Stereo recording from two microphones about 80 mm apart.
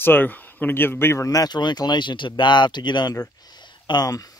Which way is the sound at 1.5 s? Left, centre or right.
Left.